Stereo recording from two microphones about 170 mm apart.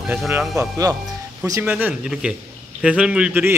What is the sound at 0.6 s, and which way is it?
A man's voice, 20° right (ahead or behind).